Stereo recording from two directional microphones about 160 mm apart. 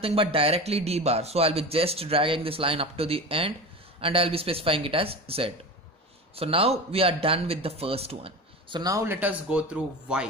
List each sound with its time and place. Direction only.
0.0 s a man's voice: 35° right (ahead or behind); by 10.2 s 5° right (ahead or behind)